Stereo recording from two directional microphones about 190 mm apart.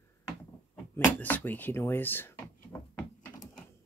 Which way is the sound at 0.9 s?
10° left (ahead or behind).